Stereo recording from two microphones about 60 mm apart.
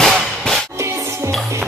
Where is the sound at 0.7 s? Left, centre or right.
Right.